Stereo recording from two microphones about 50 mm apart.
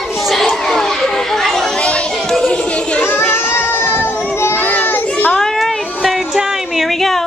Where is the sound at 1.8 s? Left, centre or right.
Left.